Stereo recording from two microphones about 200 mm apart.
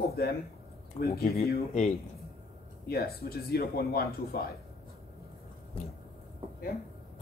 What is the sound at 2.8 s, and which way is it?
Speech, 50° left (ahead or behind).